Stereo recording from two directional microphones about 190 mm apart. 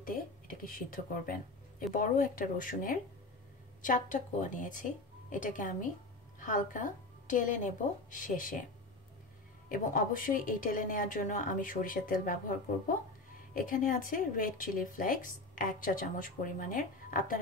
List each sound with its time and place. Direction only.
0.0 s a woman's voice: 45° left (ahead or behind)
9.7 s a woman's voice: 45° left (ahead or behind)